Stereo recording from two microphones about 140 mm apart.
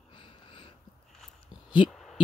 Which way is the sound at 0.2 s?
35° left (ahead or behind).